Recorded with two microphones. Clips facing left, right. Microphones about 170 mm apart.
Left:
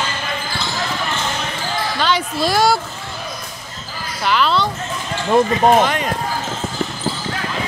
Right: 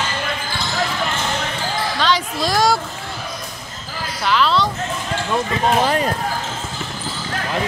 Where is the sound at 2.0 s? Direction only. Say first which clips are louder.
Left 1 dB; 5° left (ahead or behind).